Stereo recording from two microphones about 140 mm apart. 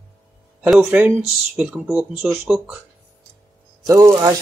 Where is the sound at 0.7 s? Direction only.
5° right (ahead or behind).